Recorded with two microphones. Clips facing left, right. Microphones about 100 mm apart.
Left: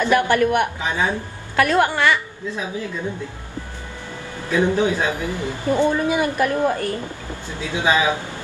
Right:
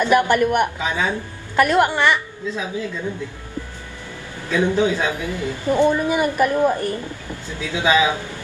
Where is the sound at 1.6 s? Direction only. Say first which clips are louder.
Right 1 dB; 10° right (ahead or behind).